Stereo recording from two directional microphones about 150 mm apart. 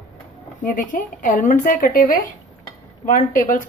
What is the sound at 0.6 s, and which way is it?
A woman's voice, 60° left (ahead or behind).